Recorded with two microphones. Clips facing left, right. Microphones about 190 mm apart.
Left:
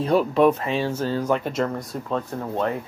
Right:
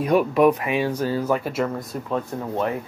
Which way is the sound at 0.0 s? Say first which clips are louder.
Right 1 dB; 10° right (ahead or behind).